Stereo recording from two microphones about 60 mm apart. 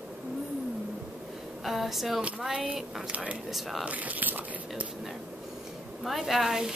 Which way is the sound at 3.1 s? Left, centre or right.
Centre.